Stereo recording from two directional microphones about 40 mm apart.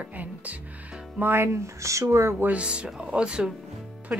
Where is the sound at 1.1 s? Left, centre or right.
Right.